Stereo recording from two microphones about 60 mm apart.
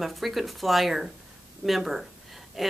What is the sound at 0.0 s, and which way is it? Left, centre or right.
Speech, centre.